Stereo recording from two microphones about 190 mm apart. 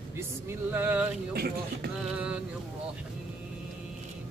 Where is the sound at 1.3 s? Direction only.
55° right (ahead or behind).